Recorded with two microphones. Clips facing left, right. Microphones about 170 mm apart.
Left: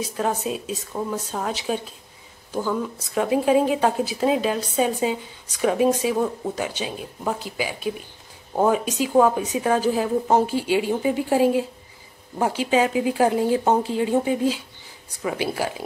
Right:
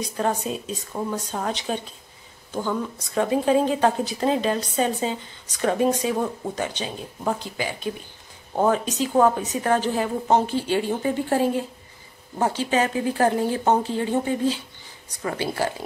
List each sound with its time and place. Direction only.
0.0 s a woman's voice: 5° left (ahead or behind)